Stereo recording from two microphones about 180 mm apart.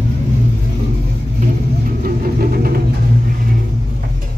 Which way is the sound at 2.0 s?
55° right (ahead or behind).